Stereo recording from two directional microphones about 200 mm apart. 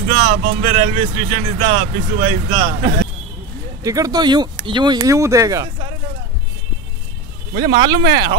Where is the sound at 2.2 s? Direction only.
30° right (ahead or behind).